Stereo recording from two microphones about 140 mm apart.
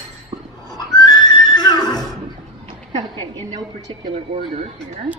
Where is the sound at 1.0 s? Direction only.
30° left (ahead or behind).